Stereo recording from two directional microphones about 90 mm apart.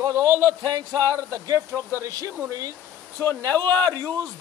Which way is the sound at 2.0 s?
35° right (ahead or behind).